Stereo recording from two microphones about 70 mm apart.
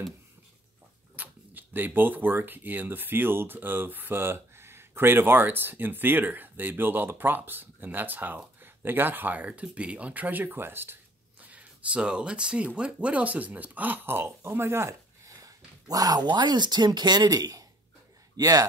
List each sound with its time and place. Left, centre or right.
1.1 s speech: right
11.4 s speech: centre; by 15.3 s right
15.3 s speech: right